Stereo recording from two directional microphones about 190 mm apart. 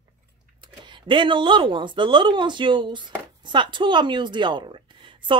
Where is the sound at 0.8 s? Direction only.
25° right (ahead or behind).